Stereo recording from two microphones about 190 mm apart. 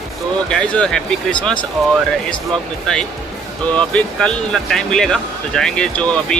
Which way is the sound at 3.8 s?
5° left (ahead or behind).